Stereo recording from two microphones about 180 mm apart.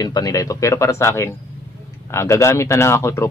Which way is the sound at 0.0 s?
20° left (ahead or behind).